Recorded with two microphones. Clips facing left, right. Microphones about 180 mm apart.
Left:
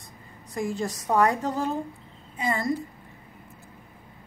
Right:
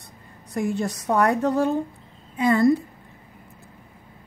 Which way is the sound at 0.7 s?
65° right (ahead or behind).